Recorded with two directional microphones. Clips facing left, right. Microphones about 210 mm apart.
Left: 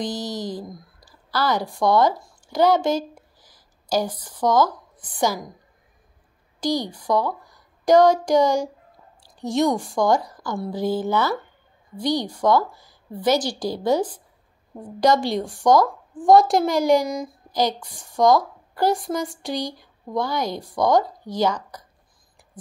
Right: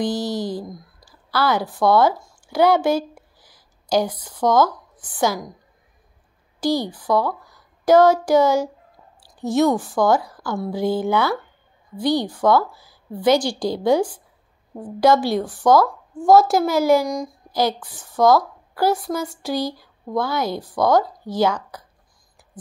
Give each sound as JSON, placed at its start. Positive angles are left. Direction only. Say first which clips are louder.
{"t": 0.0, "sound": "a sound", "louder": "right 5 dB", "side_deg": -10}
{"t": 1.3, "sound": "speech", "louder": "right 2 dB", "side_deg": -10}
{"t": 4.4, "sound": "speech", "louder": "right 2 dB", "side_deg": 10}
{"t": 6.6, "sound": "a woman's voice", "louder": "right 3 dB", "side_deg": -10}
{"t": 7.2, "sound": "a sound", "louder": "right 2 dB", "side_deg": 15}
{"t": 7.8, "sound": "a woman's voice", "louder": "right 1 dB", "side_deg": -5}
{"t": 15.7, "sound": "speech", "louder": "right 1 dB", "side_deg": 15}
{"t": 16.3, "sound": "a woman's voice", "louder": "right 1 dB", "side_deg": 0}